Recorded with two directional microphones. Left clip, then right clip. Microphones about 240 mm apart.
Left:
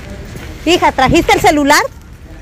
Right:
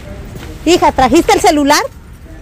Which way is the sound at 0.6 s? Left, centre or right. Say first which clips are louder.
Right 1 dB; right.